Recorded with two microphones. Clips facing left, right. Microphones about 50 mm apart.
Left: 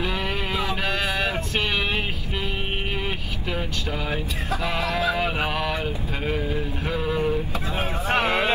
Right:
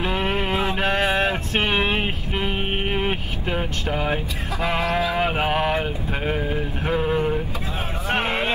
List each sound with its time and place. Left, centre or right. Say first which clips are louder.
0.0 s music: right 4 dB; right
4.6 s a sound: right 3 dB; right
6.2 s speech: right 1 dB; right
6.9 s vehicle: right 3 dB; right
8.2 s music: left 2 dB; right